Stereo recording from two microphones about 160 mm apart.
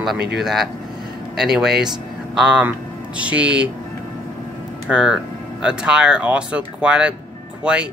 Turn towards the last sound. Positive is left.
turn(degrees=-5)  # may be behind; listen again after turning